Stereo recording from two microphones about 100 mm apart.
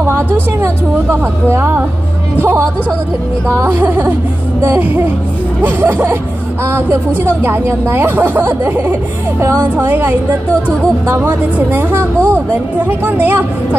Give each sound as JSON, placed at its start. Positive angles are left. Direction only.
{"t": 0.0, "sound": "a woman's voice", "side_deg": -25}